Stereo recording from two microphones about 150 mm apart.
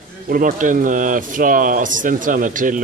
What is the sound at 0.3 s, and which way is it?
Speech, 60° right (ahead or behind).